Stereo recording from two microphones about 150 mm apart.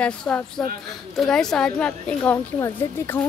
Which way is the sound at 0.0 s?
5° left (ahead or behind).